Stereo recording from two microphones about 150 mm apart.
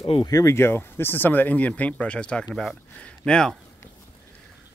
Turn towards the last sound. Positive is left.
turn(degrees=5)  # may be behind; listen again after turning